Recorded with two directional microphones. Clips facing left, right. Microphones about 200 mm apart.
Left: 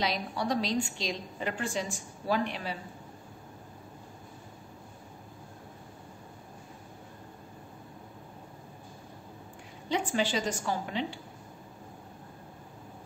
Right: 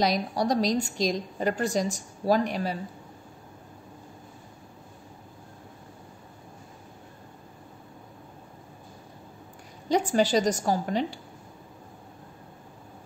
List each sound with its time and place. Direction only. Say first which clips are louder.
0.0 s a woman's voice: right 6 dB; 40° right (ahead or behind)
9.8 s a woman's voice: right 6 dB; 40° right (ahead or behind)